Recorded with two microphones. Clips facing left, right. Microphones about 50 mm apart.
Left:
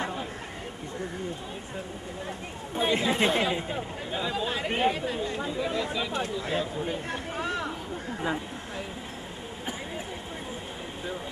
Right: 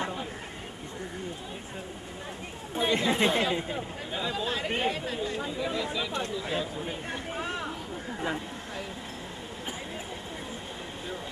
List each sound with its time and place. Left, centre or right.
0.0 s chatter: centre
2.7 s speech: centre
8.2 s a sound: centre